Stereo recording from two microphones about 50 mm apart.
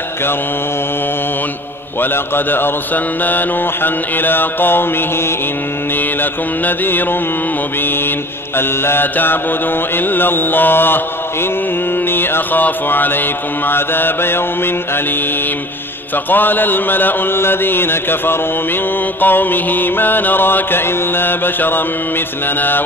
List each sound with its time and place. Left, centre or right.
2.0 s mantra: left
6.6 s mantra: left
8.5 s mantra: left
12.1 s mantra: left
16.3 s mantra: left